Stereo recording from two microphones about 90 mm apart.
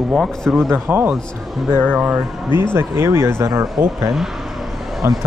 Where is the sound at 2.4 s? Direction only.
55° left (ahead or behind).